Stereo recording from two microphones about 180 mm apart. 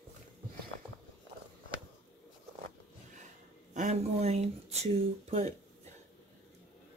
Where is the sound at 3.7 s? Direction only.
40° right (ahead or behind).